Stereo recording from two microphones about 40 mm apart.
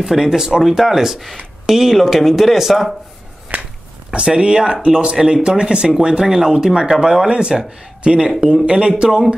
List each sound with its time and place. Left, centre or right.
0.0 s speech: centre
3.5 s a sound: right
4.1 s speech: right